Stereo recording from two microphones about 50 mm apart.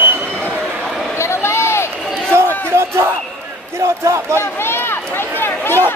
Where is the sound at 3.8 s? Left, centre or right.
Right.